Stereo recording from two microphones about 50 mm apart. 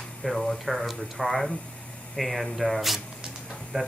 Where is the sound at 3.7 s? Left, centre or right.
Right.